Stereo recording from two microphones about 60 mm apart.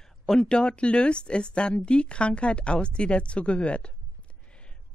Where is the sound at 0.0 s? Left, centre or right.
Centre.